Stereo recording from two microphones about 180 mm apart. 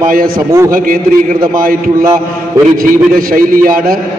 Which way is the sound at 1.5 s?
55° right (ahead or behind).